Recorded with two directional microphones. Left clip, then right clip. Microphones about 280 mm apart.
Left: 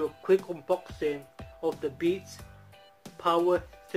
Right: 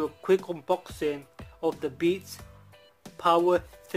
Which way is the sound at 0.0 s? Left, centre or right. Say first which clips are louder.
Even; right.